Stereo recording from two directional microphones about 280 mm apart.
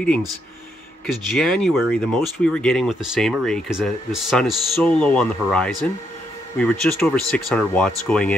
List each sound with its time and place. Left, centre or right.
1.0 s speech: centre